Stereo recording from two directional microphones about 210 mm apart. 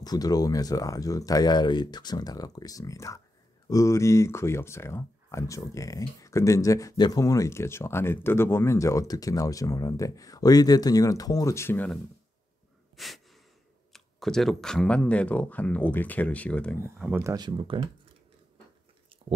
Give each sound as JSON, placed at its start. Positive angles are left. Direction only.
{"t": 0.0, "sound": "speech", "side_deg": 20}
{"t": 12.9, "sound": "breathing", "side_deg": 0}
{"t": 13.9, "sound": "speech", "side_deg": 0}
{"t": 17.1, "sound": "speech", "side_deg": -15}